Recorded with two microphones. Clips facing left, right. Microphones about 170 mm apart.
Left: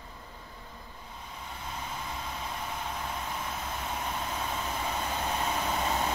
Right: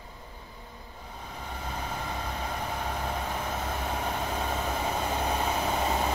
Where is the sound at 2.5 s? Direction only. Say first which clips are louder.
Right 4 dB; 40° right (ahead or behind).